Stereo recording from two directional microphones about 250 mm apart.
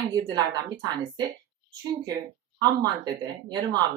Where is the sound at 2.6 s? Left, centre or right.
Centre.